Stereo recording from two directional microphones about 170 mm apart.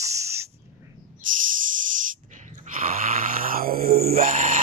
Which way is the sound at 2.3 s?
50° right (ahead or behind).